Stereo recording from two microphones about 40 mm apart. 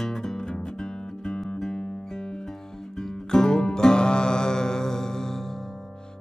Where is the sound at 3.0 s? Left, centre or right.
Centre.